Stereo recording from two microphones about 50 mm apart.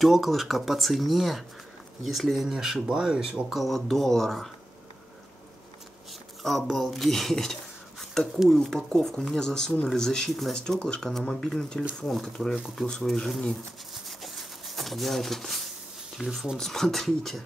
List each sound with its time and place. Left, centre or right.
0.0 s speech: centre
3.5 s speech: centre
6.4 s speech: centre
8.0 s a sound: centre
8.5 s speech: centre
13.9 s a sound: centre
16.2 s speech: centre
16.5 s speech: centre